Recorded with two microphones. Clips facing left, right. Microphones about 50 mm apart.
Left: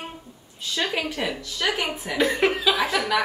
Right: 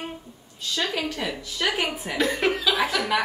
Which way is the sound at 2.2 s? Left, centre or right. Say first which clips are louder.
Left 2 dB; centre.